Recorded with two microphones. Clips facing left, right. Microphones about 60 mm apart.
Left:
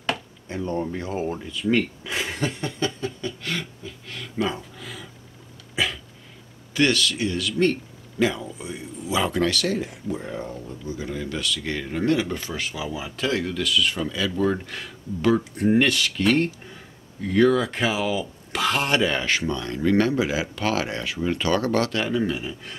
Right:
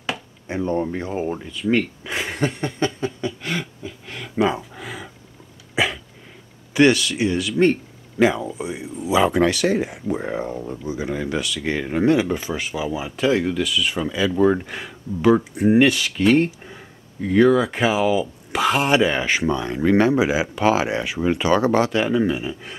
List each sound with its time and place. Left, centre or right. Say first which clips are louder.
0.5 s speech: right 4 dB; right
3.0 s a sound: right 4 dB; centre
6.7 s speech: right 5 dB; centre
10.1 s speech: right 6 dB; right
10.9 s speech: right 5 dB; centre